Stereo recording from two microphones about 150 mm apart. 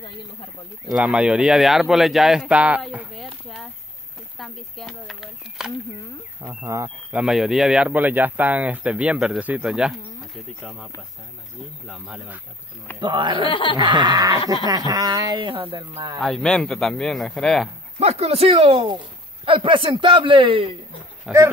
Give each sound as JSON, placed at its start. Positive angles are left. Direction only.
{"t": 0.8, "sound": "speech", "side_deg": -5}
{"t": 4.4, "sound": "speech", "side_deg": 0}
{"t": 6.7, "sound": "speech", "side_deg": -15}
{"t": 11.9, "sound": "speech", "side_deg": -5}
{"t": 13.0, "sound": "speech", "side_deg": -30}
{"t": 13.5, "sound": "speech", "side_deg": 35}
{"t": 13.7, "sound": "speech", "side_deg": -30}
{"t": 16.2, "sound": "speech", "side_deg": 0}
{"t": 17.9, "sound": "speech", "side_deg": -45}
{"t": 21.3, "sound": "speech", "side_deg": -5}